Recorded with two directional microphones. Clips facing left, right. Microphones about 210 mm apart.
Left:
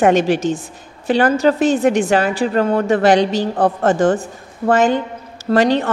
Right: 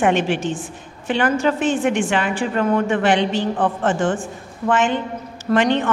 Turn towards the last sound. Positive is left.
turn(degrees=35)  # may be behind; listen again after turning